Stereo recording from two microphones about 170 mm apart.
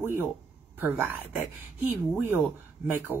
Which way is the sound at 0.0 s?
10° right (ahead or behind).